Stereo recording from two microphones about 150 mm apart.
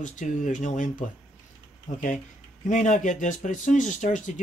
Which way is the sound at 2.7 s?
55° left (ahead or behind).